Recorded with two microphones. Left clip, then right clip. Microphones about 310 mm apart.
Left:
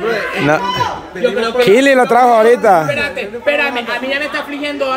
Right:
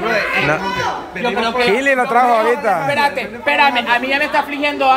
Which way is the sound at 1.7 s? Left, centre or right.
Left.